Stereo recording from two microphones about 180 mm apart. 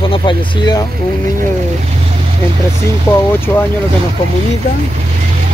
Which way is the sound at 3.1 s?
15° left (ahead or behind).